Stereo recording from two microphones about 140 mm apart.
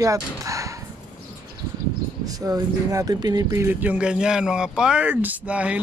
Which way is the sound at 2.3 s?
25° right (ahead or behind).